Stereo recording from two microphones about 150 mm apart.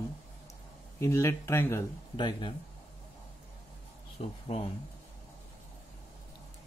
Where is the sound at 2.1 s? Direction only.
30° left (ahead or behind).